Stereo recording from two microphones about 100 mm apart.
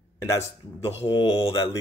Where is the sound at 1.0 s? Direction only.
55° left (ahead or behind).